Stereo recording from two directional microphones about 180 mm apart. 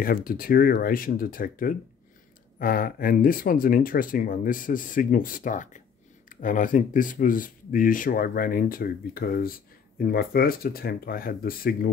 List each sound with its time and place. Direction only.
0.0 s speech: 55° left (ahead or behind)